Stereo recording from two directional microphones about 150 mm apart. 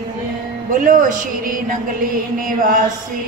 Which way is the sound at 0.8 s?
65° right (ahead or behind).